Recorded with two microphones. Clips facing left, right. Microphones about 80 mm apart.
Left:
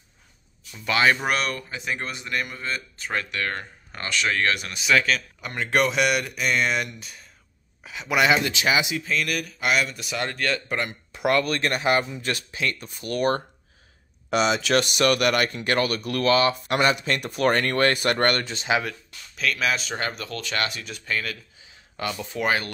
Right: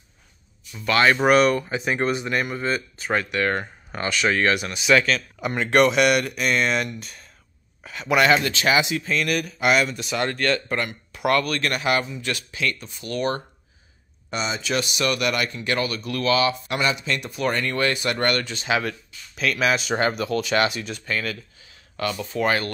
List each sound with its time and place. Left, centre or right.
0.7 s speech: centre
1.2 s speech: centre
1.7 s speech: right; by 5.2 s centre
5.4 s speech: centre
5.7 s speech: centre
10.8 s speech: left
12.8 s speech: left
14.3 s speech: left
18.4 s speech: left
19.3 s speech: centre
20.8 s speech: centre
21.6 s a sound: centre
22.2 s speech: centre